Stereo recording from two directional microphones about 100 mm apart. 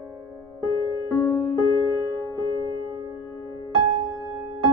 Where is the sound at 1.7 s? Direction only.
35° left (ahead or behind).